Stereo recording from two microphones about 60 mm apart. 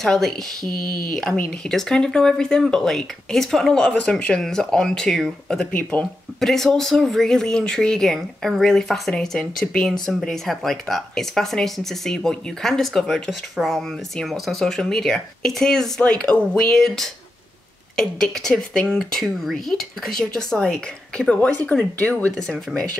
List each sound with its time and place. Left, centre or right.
0.0 s speech: centre; by 22.3 s left
22.7 s speech: centre